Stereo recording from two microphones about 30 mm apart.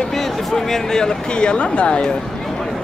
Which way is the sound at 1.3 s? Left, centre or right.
Left.